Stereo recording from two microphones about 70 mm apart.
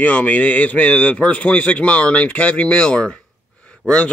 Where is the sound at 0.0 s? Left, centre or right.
Left.